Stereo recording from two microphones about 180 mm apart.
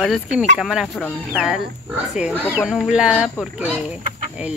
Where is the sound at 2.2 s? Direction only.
5° right (ahead or behind).